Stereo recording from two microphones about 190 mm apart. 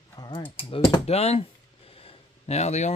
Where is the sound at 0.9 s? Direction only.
35° left (ahead or behind).